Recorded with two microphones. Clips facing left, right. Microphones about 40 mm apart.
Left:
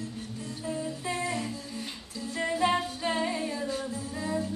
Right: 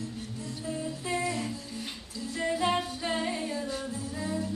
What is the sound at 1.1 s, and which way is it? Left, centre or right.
Music, left.